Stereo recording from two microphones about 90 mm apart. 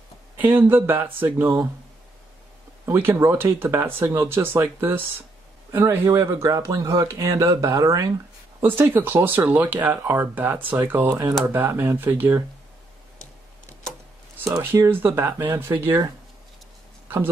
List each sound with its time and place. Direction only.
0.4 s speech: 20° right (ahead or behind)
2.8 s speech: 25° right (ahead or behind)
5.7 s speech: 35° right (ahead or behind)
8.5 s speech: 25° right (ahead or behind)
14.4 s speech: 20° right (ahead or behind)